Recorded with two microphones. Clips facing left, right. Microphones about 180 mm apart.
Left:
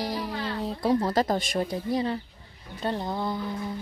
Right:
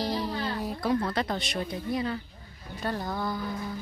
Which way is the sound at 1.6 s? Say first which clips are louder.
Left 3 dB; 35° left (ahead or behind).